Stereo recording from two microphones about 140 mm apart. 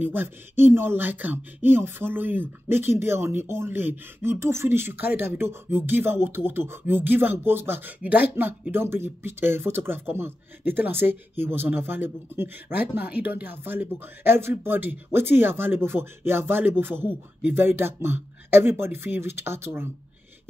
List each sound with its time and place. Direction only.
0.0 s speech: 15° right (ahead or behind)